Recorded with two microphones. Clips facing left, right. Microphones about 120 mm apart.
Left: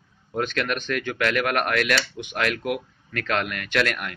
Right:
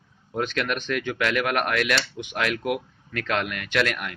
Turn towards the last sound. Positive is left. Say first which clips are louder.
# even
turn(degrees=-10)  # may be behind; listen again after turning